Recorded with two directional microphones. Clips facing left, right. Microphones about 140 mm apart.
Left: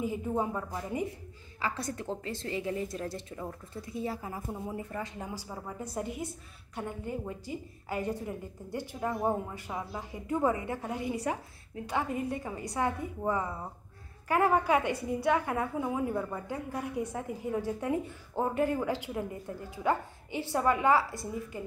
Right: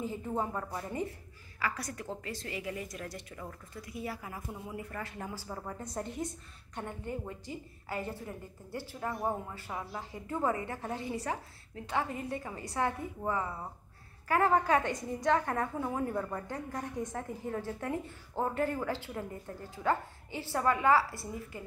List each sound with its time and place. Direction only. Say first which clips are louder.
0.5 s a woman's voice: left 2 dB; 5° left (ahead or behind)
1.6 s a woman's voice: left 2 dB; 25° left (ahead or behind)